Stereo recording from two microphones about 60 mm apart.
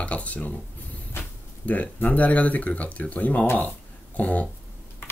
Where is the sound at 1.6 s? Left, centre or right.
Left.